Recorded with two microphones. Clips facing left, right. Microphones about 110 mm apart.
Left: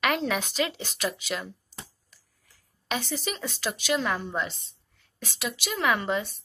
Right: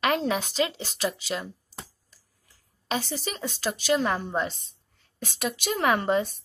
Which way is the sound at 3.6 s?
40° right (ahead or behind).